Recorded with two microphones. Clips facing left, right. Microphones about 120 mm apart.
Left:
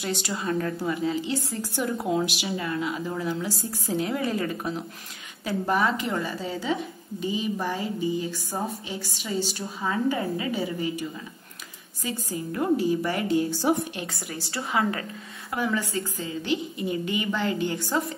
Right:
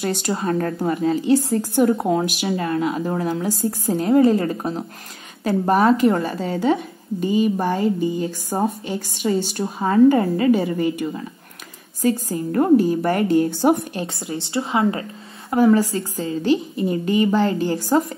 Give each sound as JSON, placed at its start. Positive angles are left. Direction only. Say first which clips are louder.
{"t": 0.0, "sound": "speech", "louder": "right 7 dB", "side_deg": -50}
{"t": 12.0, "sound": "speech", "louder": "right 11 dB", "side_deg": -45}
{"t": 13.9, "sound": "a woman's voice", "louder": "right 7 dB", "side_deg": -30}
{"t": 15.5, "sound": "a woman's voice", "louder": "right 11 dB", "side_deg": -40}